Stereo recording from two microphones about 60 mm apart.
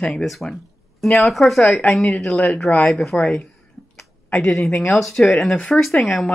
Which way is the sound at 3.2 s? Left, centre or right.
Centre.